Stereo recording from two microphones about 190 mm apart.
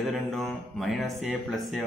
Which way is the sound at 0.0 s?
Centre (ahead or behind).